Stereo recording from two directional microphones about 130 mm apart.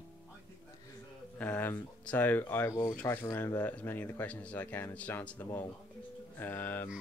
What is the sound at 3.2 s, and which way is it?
Speech, 25° left (ahead or behind).